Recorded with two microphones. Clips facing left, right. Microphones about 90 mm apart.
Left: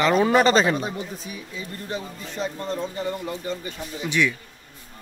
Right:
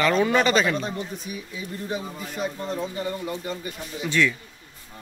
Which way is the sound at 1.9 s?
10° right (ahead or behind).